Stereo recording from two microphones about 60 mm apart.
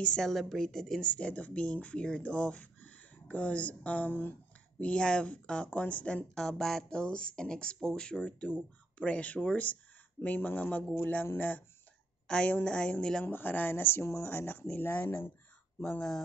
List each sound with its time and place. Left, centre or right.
0.0 s speech: centre
1.1 s speech: left
4.7 s speech: centre
6.3 s speech: centre; by 11.6 s left
12.3 s speech: centre
13.2 s speech: left
14.0 s speech: left
14.3 s speech: left